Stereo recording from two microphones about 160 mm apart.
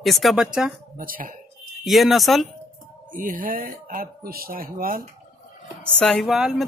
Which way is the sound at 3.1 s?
60° right (ahead or behind).